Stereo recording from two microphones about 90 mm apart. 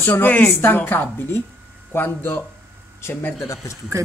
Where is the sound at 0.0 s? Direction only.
20° left (ahead or behind).